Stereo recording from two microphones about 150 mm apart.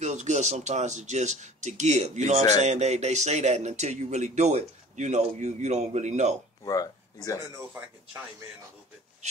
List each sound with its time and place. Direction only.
0.0 s speech: 50° right (ahead or behind)
6.6 s speech: 25° left (ahead or behind)